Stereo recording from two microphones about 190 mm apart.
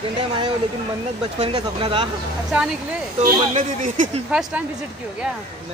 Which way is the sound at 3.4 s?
40° right (ahead or behind).